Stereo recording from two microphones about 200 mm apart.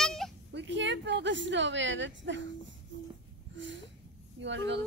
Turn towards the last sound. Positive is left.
turn(degrees=-65)  # may be behind; listen again after turning